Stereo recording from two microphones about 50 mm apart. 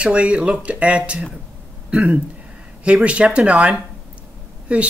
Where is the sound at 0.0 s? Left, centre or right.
Right.